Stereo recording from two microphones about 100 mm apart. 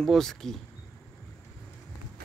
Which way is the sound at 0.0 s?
5° left (ahead or behind).